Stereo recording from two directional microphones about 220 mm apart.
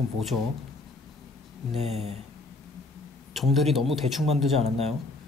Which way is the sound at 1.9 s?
30° right (ahead or behind).